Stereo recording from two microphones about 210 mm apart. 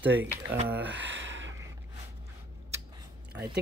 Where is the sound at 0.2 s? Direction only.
10° right (ahead or behind).